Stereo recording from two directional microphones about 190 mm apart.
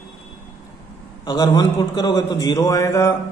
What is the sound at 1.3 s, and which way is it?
A man's voice, 20° left (ahead or behind).